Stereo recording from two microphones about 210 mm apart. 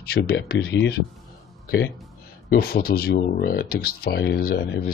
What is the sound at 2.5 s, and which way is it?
Speech, 50° left (ahead or behind).